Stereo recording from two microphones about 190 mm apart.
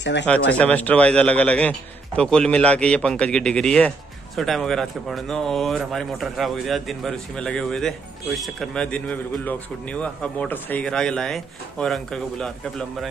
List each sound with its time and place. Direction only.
0.0 s speech: 65° left (ahead or behind)
0.5 s speech: 10° left (ahead or behind)